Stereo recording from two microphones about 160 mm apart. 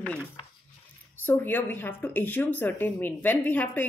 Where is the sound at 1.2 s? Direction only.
10° left (ahead or behind).